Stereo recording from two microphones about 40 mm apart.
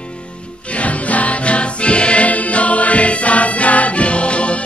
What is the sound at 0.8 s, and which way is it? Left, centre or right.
Music, left.